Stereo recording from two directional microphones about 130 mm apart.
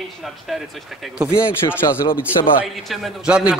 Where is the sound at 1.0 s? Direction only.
5° right (ahead or behind).